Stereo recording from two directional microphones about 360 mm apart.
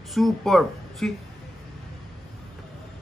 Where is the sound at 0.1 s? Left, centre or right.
Centre.